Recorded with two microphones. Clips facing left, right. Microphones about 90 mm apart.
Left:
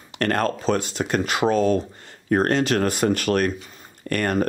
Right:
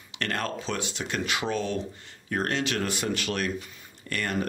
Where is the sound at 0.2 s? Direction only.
45° left (ahead or behind).